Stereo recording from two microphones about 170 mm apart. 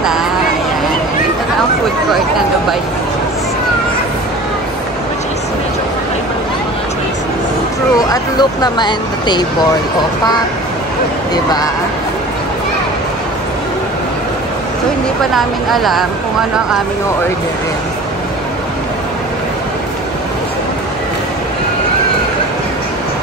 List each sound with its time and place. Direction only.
8.1 s speech: 25° left (ahead or behind)
15.3 s a woman's voice: centre (ahead or behind)